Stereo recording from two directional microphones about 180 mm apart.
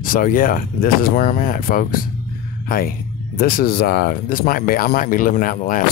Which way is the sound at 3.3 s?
55° left (ahead or behind).